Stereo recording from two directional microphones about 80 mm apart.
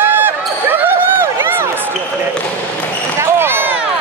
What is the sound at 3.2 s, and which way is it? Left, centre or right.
Basketball bounce, right.